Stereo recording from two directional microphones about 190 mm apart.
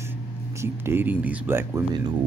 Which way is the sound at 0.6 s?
10° right (ahead or behind).